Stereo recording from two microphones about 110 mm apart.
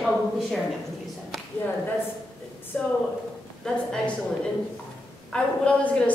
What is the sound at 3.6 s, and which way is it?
Speech, 5° left (ahead or behind).